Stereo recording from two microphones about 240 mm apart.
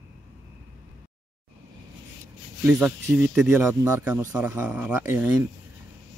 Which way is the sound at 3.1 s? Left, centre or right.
Centre.